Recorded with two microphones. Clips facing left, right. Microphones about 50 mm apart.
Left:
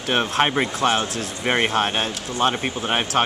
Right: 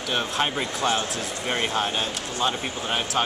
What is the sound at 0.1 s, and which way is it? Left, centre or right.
Speech, left.